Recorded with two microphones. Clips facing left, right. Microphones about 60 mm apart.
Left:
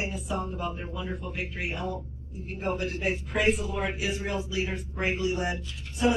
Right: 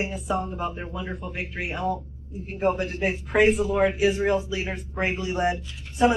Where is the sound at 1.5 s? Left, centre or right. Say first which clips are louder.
Right 8 dB; right.